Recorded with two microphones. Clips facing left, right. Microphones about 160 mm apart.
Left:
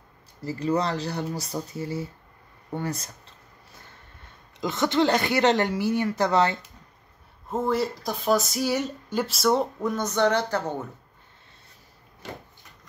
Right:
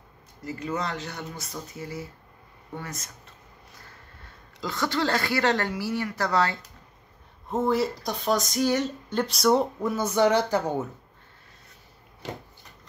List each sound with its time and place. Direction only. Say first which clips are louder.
0.4 s speech: left 5 dB; 35° left (ahead or behind)
4.6 s a woman's voice: left 5 dB; 20° left (ahead or behind)
7.4 s speech: right 1 dB; centre (ahead or behind)